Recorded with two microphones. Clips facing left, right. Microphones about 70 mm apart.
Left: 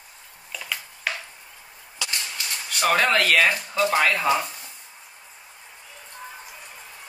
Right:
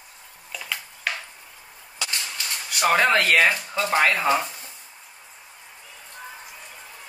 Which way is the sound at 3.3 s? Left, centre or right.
Right.